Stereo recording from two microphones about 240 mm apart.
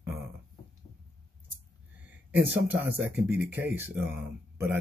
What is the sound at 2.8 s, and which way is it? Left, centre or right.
Speech, centre.